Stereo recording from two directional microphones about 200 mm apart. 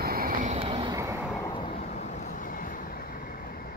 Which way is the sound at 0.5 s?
25° right (ahead or behind).